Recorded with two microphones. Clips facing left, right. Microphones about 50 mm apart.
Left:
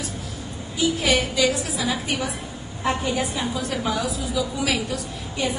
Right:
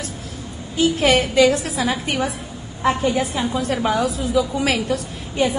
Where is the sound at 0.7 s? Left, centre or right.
Right.